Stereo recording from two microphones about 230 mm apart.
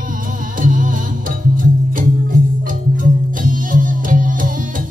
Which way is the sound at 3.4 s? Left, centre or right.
Right.